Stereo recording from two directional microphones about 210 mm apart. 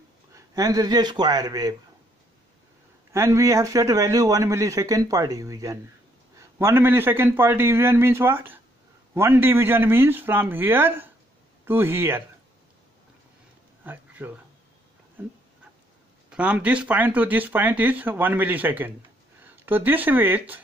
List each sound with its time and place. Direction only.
0.3 s speech: 15° right (ahead or behind)
3.1 s a man's voice: 15° right (ahead or behind)
13.8 s speech: 10° right (ahead or behind)
15.2 s dog: 10° right (ahead or behind)
16.3 s a man's voice: 5° right (ahead or behind)